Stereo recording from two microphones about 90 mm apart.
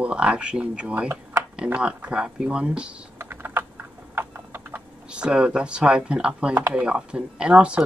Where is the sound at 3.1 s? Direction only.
25° right (ahead or behind).